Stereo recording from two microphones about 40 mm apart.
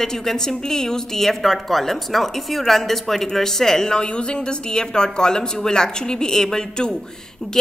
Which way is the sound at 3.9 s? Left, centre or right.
Left.